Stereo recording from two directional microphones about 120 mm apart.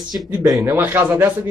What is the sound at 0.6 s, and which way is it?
Speech, 15° right (ahead or behind).